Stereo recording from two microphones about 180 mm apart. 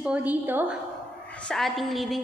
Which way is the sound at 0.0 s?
10° right (ahead or behind).